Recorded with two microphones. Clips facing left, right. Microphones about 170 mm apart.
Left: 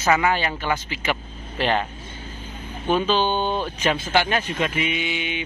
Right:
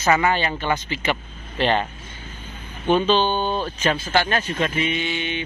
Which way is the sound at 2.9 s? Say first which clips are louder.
Right 2 dB; 5° left (ahead or behind).